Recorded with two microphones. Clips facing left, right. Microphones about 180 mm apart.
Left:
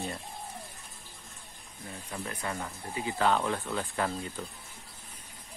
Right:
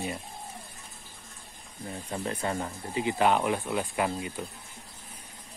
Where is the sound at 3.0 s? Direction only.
15° right (ahead or behind).